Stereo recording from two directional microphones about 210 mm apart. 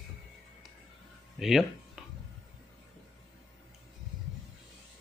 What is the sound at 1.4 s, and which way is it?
Speech, centre (ahead or behind).